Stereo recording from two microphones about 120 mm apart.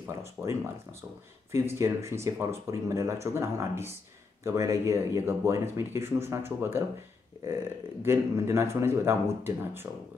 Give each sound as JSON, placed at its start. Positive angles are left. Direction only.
{"t": 0.0, "sound": "speech", "side_deg": -20}
{"t": 8.0, "sound": "speech", "side_deg": -20}